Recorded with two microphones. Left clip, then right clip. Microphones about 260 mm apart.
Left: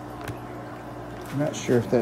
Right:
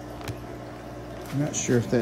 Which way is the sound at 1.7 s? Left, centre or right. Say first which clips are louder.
Left 2 dB; centre.